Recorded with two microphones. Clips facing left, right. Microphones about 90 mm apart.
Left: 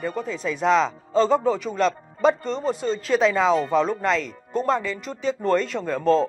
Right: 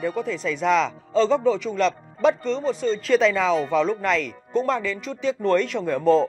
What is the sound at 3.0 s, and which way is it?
Speech, 5° left (ahead or behind).